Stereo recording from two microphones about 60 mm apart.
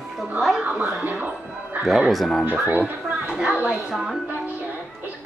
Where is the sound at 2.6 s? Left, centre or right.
Right.